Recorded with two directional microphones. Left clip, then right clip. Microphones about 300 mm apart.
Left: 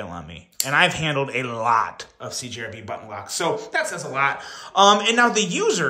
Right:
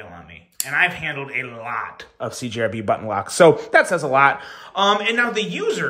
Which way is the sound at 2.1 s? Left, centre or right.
Centre.